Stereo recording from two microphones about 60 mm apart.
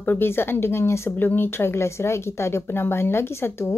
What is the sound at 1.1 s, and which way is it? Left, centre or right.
Speech, left.